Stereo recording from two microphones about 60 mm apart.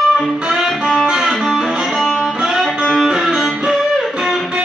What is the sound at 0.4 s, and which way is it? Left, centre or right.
Music, centre.